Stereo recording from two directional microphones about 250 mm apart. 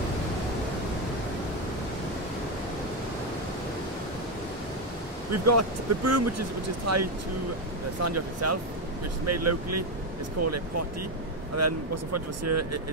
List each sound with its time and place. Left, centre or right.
5.3 s speech: right
8.0 s speech: right